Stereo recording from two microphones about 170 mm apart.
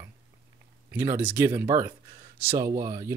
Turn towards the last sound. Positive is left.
turn(degrees=-20)  # may be behind; listen again after turning